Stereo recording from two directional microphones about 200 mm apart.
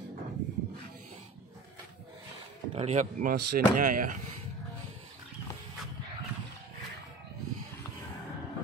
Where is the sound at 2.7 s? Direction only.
35° right (ahead or behind).